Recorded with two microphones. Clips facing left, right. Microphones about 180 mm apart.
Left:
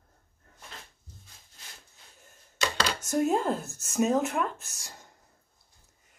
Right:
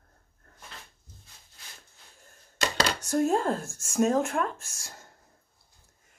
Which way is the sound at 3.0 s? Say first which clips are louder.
Even; 5° left (ahead or behind).